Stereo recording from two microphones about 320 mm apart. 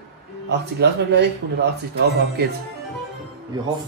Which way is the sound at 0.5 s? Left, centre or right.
Right.